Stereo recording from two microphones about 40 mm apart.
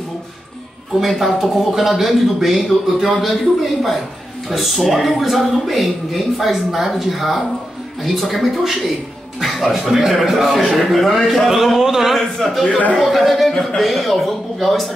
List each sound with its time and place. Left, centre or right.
1.0 s speech: centre
4.5 s speech: centre
12.6 s a man's voice: left
12.9 s speech: centre
13.5 s speech: centre
13.7 s speech: centre